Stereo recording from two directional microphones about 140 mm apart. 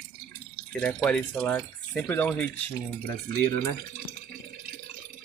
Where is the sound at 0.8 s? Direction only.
10° left (ahead or behind).